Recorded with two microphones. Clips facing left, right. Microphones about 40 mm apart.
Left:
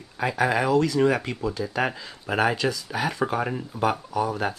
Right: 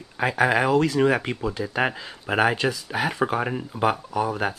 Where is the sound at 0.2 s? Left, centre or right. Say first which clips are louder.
Right 2 dB; right.